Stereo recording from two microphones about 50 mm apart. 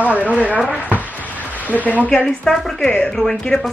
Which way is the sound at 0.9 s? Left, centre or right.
Left.